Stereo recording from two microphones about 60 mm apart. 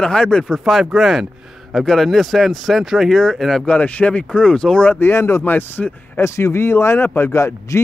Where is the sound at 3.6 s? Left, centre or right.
Left.